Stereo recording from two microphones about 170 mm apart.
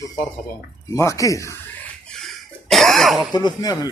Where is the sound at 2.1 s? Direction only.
Centre (ahead or behind).